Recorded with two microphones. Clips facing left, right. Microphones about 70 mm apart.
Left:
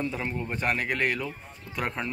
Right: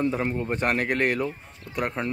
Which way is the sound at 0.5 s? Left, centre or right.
Right.